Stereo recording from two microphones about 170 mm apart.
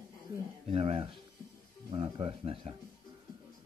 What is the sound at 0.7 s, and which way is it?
Speech, 35° right (ahead or behind).